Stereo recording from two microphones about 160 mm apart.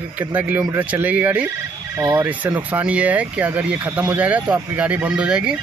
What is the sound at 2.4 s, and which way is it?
Speech, 10° right (ahead or behind).